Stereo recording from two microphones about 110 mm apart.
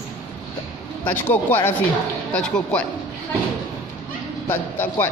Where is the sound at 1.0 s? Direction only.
15° left (ahead or behind).